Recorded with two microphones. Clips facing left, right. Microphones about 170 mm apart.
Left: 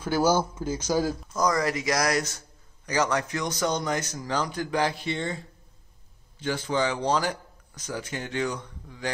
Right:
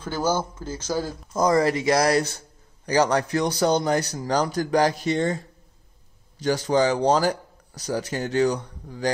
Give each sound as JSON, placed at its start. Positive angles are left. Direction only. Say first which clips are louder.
{"t": 0.0, "sound": "a man's voice", "louder": "left 2 dB", "side_deg": 10}
{"t": 1.3, "sound": "speech", "louder": "right 7 dB", "side_deg": -30}
{"t": 6.4, "sound": "speech", "louder": "right 6 dB", "side_deg": -40}